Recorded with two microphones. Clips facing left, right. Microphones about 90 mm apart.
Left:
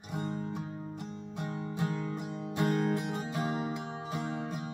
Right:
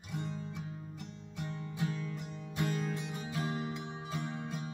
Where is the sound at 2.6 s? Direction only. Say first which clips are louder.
Left 6 dB; 65° left (ahead or behind).